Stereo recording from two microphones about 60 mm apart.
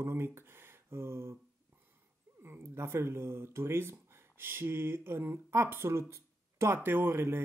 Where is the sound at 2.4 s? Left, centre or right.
Right.